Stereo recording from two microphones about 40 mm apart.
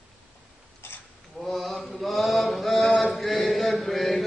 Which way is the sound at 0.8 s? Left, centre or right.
Left.